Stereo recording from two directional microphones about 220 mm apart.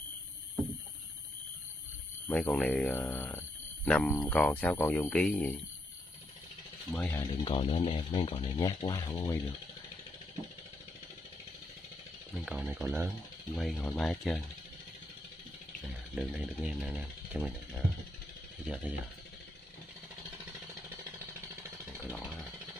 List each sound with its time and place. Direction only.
2.2 s speech: 5° left (ahead or behind)
6.9 s speech: 10° left (ahead or behind)
12.4 s speech: centre (ahead or behind)
13.6 s speech: 5° left (ahead or behind)
16.2 s speech: centre (ahead or behind)
22.1 s chainsaw: 5° left (ahead or behind)